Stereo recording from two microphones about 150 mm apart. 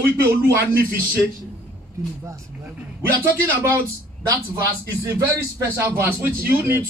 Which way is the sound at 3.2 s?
20° right (ahead or behind).